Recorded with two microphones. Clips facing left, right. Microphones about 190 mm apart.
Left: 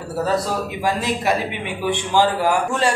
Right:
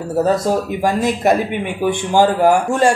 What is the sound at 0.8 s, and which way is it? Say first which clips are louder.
Speech: right 5 dB; 50° right (ahead or behind).